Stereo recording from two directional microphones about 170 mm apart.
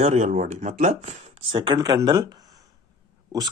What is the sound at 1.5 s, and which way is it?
A man's voice, 30° right (ahead or behind).